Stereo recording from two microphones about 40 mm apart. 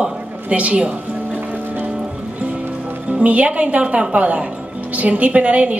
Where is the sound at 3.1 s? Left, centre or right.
Right.